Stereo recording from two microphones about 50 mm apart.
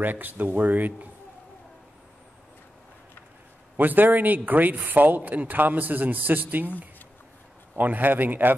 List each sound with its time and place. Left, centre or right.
0.0 s speech: right
3.7 s speech: right
7.7 s speech: right